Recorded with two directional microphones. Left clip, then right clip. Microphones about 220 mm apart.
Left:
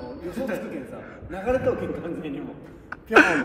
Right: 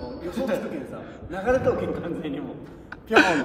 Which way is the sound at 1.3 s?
5° right (ahead or behind).